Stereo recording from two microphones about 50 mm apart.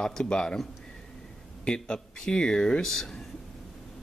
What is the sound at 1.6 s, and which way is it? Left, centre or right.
Speech, centre.